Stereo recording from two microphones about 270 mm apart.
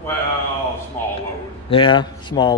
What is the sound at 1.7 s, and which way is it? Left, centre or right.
Speech, centre.